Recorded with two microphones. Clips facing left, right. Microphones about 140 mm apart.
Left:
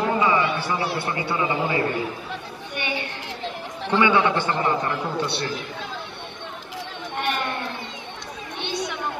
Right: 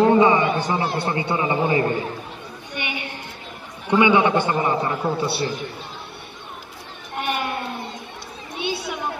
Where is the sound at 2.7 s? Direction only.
15° right (ahead or behind).